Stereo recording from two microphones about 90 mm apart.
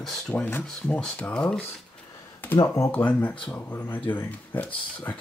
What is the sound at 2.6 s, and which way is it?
Speech, 40° left (ahead or behind).